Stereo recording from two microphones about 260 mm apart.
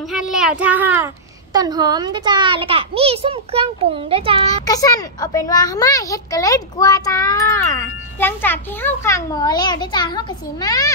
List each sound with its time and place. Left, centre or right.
0.1 s a child's voice: centre; by 4.5 s right
4.5 s a child's voice: centre